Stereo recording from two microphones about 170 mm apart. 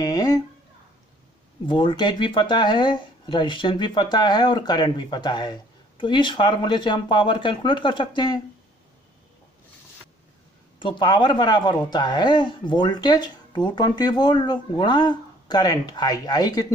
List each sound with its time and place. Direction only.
0.0 s a sound: 20° left (ahead or behind)
1.7 s speech: 30° left (ahead or behind)
10.8 s speech: 25° left (ahead or behind)